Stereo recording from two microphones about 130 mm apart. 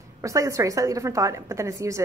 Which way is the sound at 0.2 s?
25° right (ahead or behind).